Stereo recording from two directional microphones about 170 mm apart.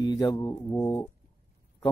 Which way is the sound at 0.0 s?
25° left (ahead or behind).